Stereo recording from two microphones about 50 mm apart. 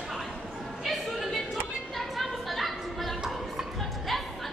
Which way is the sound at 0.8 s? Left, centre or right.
Centre.